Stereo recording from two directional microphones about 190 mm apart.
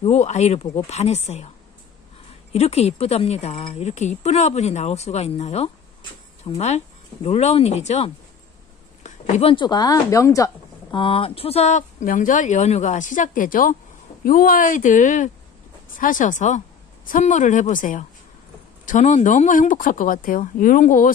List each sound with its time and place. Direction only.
0.0 s speech: 35° left (ahead or behind)
2.5 s speech: 35° left (ahead or behind)